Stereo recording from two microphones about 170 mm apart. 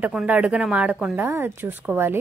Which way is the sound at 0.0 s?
5° right (ahead or behind).